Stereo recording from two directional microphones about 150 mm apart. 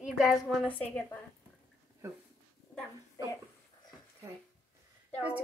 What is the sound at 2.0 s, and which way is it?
Speech, 20° right (ahead or behind).